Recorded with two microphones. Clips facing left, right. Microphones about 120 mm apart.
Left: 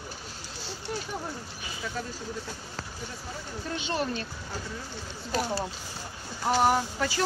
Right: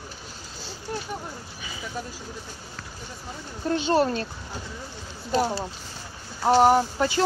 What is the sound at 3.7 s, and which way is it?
Speech, 40° right (ahead or behind).